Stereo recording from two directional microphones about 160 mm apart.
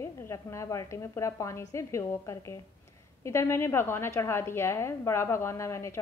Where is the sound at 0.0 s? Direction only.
20° left (ahead or behind).